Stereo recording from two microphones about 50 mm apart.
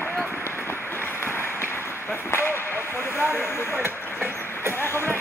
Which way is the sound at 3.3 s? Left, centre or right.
Left.